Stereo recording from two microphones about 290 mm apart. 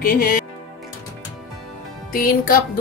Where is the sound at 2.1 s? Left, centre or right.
Left.